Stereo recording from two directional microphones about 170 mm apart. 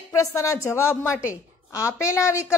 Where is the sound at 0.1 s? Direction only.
15° left (ahead or behind).